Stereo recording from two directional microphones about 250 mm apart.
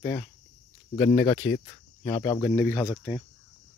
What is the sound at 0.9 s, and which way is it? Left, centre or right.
Speech, centre.